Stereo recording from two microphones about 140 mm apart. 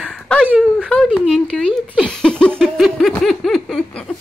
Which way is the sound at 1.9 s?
5° left (ahead or behind).